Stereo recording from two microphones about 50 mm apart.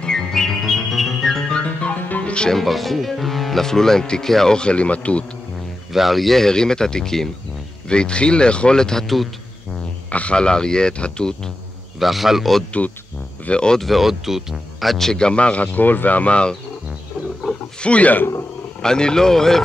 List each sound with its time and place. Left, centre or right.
0.0 s music: centre
1.4 s music: centre
1.7 s music: left
2.5 s speech: centre; by 5.2 s left
5.9 s speech: centre
9.0 s a man's voice: centre
10.0 s speech: left
12.0 s a man's voice: centre
13.5 s speech: centre
13.7 s speech: centre; by 16.5 s left
17.7 s speech: left
18.8 s speech: centre